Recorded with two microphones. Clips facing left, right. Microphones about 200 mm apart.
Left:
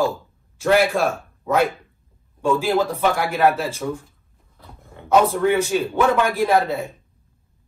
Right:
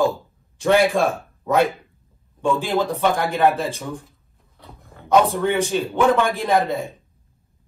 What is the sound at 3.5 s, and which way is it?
Speech, 15° right (ahead or behind).